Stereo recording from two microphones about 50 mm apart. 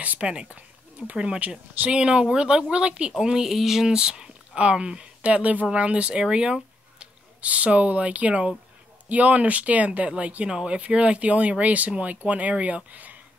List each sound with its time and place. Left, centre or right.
0.0 s speech: right
5.2 s speech: right
6.2 s a sound: centre
7.4 s speech: right